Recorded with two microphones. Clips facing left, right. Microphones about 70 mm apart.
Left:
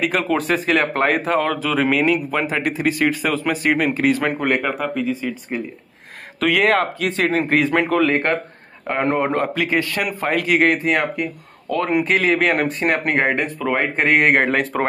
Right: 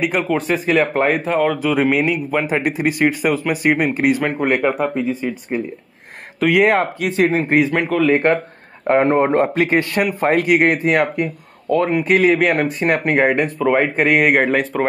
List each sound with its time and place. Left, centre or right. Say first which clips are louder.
0.0 s speech: right 1 dB; centre
4.7 s a man's voice: right 3 dB; right
12.4 s speech: right 2 dB; centre